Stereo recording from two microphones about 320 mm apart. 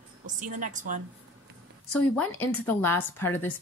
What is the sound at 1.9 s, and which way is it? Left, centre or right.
Speech, centre.